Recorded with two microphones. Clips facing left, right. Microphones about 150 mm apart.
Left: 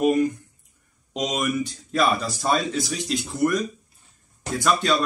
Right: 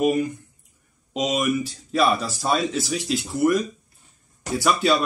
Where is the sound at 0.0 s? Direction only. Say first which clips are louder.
Left 1 dB; centre (ahead or behind).